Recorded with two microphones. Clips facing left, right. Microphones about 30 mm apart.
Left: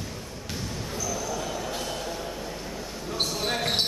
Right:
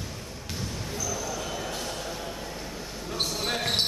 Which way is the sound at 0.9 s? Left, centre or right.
Centre.